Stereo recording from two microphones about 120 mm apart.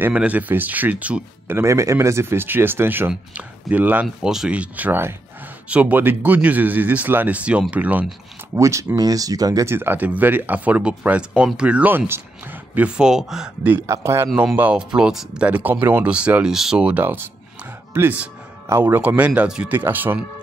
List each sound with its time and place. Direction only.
0.0 s speech: 10° right (ahead or behind)
1.6 s speech: 25° right (ahead or behind)
8.5 s speech: 25° right (ahead or behind)
9.8 s speech: 15° right (ahead or behind)
13.8 s speech: 25° right (ahead or behind)